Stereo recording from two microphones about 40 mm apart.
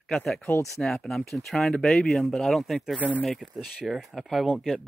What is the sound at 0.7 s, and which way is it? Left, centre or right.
Speech, centre.